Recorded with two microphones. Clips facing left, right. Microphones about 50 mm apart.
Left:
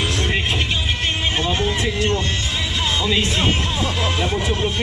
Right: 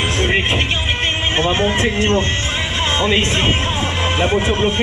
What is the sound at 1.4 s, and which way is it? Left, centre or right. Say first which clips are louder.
Speech: right 7 dB; right.